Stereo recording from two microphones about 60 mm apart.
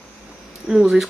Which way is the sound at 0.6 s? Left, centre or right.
Centre.